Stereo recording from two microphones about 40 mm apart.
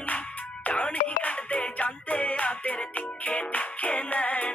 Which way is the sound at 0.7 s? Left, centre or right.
Left.